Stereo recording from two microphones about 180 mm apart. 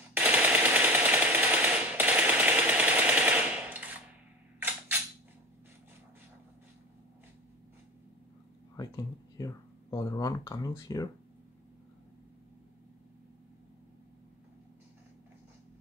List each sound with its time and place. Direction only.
0.1 s machine gun: 5° right (ahead or behind)
8.7 s speech: 20° left (ahead or behind)